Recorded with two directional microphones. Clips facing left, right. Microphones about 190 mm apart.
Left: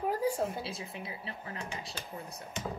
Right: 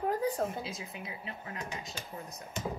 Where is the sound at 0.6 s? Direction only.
30° left (ahead or behind).